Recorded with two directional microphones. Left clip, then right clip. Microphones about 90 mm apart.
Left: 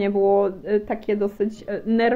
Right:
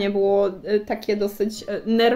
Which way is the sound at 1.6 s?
30° right (ahead or behind).